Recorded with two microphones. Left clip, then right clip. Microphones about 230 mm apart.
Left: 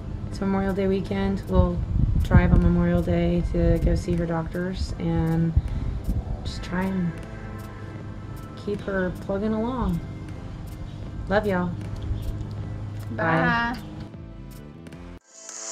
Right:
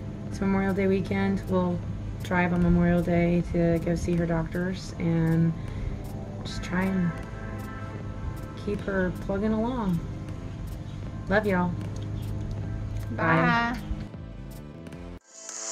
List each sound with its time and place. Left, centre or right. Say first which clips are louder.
0.4 s speech: left 1 dB; centre
6.5 s music: left 1 dB; centre
8.6 s speech: left 2 dB; centre
11.2 s speech: left 2 dB; centre
13.1 s speech: left 1 dB; centre